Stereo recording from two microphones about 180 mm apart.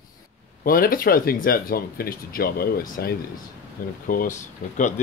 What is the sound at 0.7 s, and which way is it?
Speech, 55° left (ahead or behind).